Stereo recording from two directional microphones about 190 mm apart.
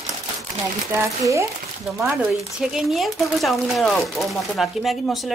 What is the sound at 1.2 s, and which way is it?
Speech, 15° right (ahead or behind).